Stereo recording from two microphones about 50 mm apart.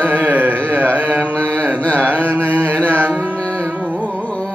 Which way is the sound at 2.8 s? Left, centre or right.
Right.